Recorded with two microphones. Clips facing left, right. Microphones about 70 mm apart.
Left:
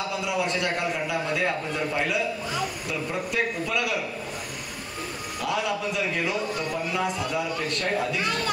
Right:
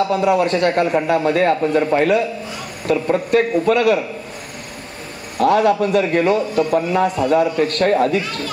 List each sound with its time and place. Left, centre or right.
0.1 s a man's voice: right
5.4 s a man's voice: right